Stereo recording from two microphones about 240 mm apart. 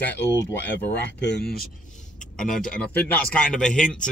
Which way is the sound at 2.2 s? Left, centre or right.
Centre.